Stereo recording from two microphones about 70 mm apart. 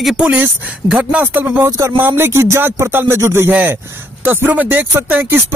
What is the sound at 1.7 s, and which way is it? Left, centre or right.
Speech, right.